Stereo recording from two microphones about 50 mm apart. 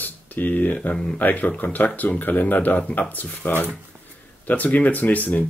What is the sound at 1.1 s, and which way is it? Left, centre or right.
Speech, left.